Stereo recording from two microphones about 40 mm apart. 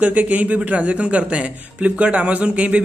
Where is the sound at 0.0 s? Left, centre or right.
Right.